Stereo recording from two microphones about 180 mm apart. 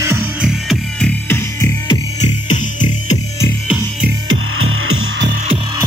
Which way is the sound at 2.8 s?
20° left (ahead or behind).